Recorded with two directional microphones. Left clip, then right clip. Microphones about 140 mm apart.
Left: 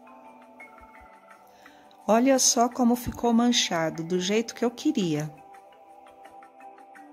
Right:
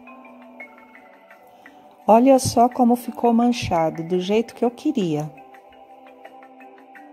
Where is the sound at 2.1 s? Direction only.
25° right (ahead or behind).